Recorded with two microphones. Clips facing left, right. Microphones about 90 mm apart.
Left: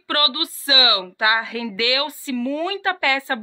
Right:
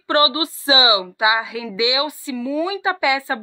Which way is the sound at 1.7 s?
15° right (ahead or behind).